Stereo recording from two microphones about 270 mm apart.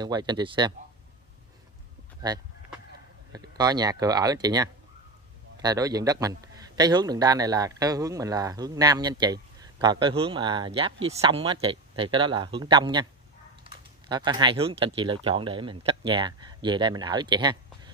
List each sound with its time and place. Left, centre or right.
0.0 s a man's voice: centre
2.2 s a man's voice: centre